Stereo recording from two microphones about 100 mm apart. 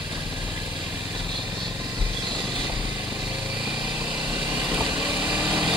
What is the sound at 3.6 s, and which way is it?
Vehicle, 5° right (ahead or behind).